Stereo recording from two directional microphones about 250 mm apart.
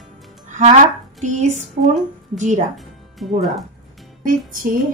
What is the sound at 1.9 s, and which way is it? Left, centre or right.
Speech, right.